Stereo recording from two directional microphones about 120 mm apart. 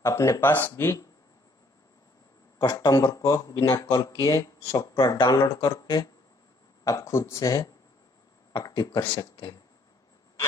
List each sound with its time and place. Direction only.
0.0 s speech: 25° left (ahead or behind)
2.6 s speech: 35° left (ahead or behind)
3.0 s speech: 25° left (ahead or behind)